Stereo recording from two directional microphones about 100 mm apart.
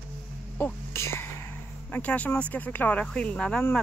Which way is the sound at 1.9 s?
15° left (ahead or behind).